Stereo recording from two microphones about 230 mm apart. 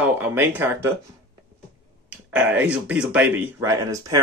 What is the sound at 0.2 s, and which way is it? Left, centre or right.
Speech, centre.